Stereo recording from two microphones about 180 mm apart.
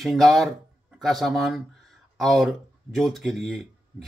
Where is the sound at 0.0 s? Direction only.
Centre (ahead or behind).